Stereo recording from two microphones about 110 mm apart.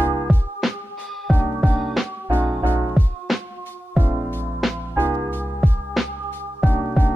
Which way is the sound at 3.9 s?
20° left (ahead or behind).